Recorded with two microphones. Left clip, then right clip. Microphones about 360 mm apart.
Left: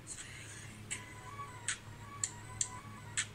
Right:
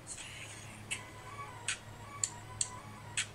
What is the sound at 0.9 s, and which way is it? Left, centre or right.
Music, centre.